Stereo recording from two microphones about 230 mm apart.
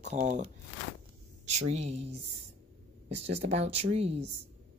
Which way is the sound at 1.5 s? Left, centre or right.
Right.